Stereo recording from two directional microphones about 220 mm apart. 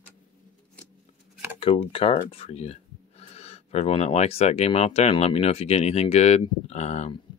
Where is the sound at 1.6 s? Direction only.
25° left (ahead or behind).